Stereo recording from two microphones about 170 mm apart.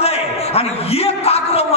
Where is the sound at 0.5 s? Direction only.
35° left (ahead or behind).